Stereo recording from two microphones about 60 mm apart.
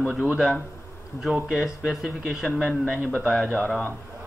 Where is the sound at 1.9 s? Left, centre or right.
Centre.